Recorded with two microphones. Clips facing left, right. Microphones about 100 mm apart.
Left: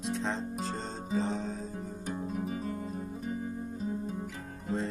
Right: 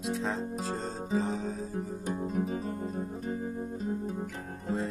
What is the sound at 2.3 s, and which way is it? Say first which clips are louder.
Music: right 2 dB; 40° right (ahead or behind).